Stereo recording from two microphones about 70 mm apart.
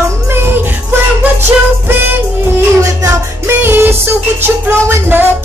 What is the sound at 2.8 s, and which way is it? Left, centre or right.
Music, right.